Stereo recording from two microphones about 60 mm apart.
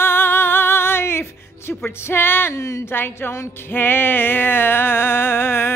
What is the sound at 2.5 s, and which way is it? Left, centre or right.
Speech, left.